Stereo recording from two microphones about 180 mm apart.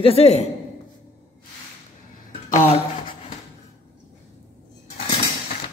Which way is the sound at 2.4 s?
40° left (ahead or behind).